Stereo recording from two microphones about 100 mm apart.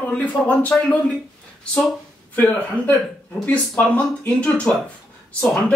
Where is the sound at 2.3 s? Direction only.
15° left (ahead or behind).